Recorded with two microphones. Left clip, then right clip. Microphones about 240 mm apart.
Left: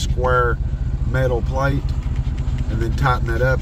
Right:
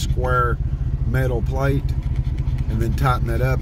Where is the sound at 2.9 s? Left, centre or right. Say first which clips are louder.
Left 3 dB; centre.